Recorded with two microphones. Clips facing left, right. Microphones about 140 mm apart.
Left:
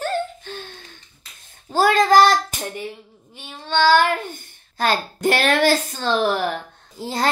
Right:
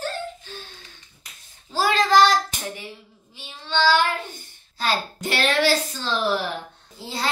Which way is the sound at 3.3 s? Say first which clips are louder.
Left 3 dB; 50° left (ahead or behind).